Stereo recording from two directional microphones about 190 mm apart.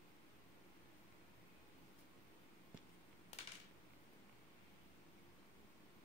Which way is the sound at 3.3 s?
35° left (ahead or behind).